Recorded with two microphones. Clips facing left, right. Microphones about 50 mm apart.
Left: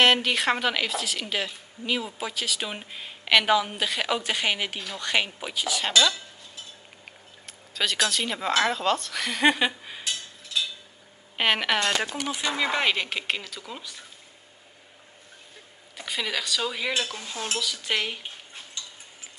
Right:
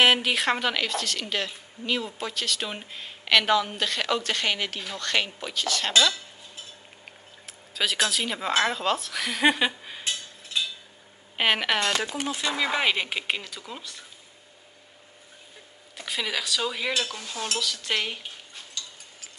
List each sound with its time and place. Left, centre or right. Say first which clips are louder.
0.0 s a woman's voice: even; centre
7.1 s speech: even; centre
11.3 s a woman's voice: even; centre
16.0 s a woman's voice: even; centre
18.8 s a sound: right 2 dB; left